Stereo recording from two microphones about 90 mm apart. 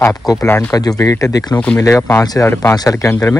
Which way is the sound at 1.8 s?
30° left (ahead or behind).